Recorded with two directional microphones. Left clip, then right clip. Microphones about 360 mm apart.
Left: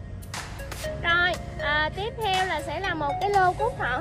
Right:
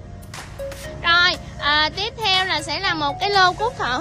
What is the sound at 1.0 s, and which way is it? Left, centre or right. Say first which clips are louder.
Music: right 7 dB; centre.